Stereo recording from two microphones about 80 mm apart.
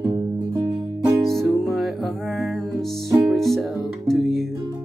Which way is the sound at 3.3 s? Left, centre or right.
Centre.